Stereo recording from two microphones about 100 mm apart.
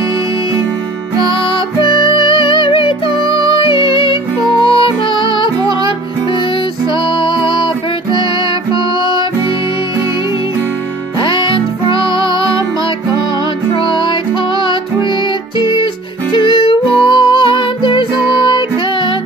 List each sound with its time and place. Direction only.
1.9 s music: 55° left (ahead or behind)
7.2 s music: 55° left (ahead or behind)
11.1 s music: 55° left (ahead or behind)
13.8 s music: 55° left (ahead or behind)
15.6 s music: 55° left (ahead or behind)